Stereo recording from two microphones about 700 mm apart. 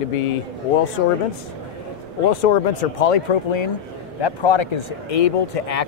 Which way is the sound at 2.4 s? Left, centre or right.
Left.